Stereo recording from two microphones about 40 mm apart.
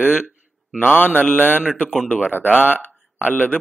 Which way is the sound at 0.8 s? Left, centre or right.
Left.